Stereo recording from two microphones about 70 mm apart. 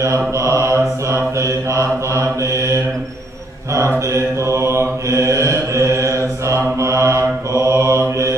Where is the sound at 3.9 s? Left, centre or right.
Right.